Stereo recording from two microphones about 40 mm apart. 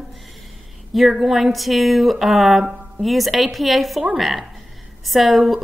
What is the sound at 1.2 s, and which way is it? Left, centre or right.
A woman's voice, centre.